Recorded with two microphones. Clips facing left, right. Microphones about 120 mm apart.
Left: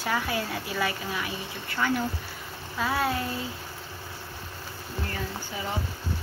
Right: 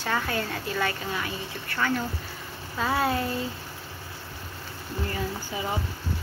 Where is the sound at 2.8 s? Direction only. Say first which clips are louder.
Right 2 dB; centre (ahead or behind).